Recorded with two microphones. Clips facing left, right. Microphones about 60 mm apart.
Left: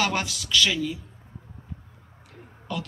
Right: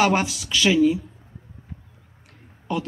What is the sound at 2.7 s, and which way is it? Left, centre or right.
Speech, right.